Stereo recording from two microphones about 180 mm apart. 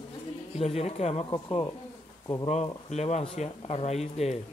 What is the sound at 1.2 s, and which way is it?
Speech, 25° left (ahead or behind).